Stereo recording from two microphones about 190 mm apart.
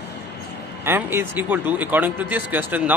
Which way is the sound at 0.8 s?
10° right (ahead or behind).